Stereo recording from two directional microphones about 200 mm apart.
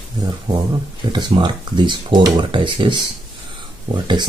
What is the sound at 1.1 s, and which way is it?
Speech, 25° right (ahead or behind).